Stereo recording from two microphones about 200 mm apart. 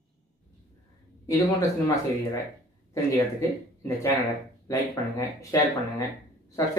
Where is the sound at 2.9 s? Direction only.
15° left (ahead or behind).